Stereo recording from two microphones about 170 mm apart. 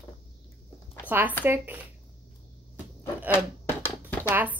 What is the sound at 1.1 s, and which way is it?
Speech, 10° right (ahead or behind).